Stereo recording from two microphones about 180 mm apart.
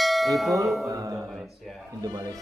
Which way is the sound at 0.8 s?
20° right (ahead or behind).